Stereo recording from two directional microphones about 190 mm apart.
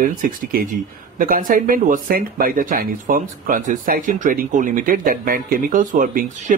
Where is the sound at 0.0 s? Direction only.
45° right (ahead or behind).